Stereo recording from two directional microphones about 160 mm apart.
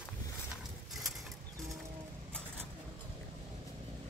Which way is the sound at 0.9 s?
Centre (ahead or behind).